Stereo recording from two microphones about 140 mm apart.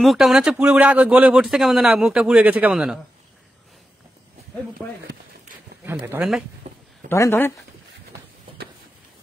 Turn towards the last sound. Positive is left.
turn(degrees=20)  # may be behind; listen again after turning